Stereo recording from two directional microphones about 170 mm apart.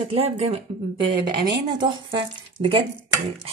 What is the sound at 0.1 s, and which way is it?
Speech, 35° right (ahead or behind).